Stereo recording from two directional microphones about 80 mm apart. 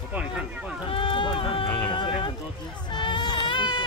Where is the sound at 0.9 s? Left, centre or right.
Left.